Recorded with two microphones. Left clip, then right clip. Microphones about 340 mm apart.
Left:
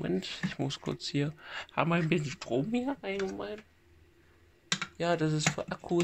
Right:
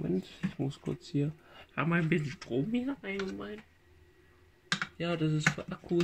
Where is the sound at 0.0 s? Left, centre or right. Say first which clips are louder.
Left 2 dB; left.